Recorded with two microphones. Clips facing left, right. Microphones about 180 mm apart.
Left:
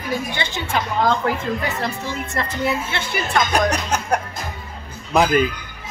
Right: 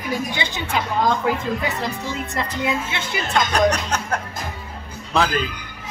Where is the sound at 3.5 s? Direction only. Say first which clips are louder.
Right 1 dB; 10° left (ahead or behind).